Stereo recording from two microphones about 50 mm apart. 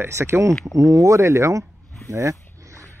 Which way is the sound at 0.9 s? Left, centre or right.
Right.